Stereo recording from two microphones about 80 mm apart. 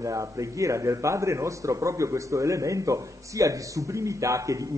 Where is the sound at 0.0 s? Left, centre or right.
Right.